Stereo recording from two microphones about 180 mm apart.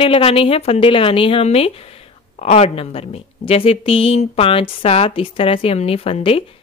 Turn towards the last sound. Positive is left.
turn(degrees=30)  # may be behind; listen again after turning